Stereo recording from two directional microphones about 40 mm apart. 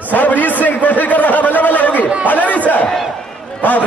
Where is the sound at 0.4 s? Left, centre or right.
Left.